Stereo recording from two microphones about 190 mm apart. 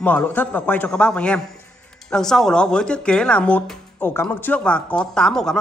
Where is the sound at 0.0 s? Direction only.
10° left (ahead or behind).